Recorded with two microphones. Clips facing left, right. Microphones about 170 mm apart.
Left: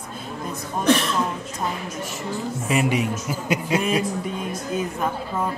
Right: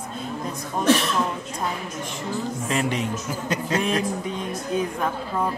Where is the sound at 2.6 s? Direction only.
10° left (ahead or behind).